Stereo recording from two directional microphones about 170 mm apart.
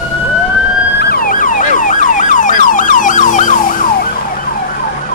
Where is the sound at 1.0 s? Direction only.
60° left (ahead or behind).